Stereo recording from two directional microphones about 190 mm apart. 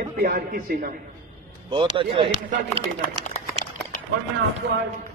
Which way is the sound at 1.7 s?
25° right (ahead or behind).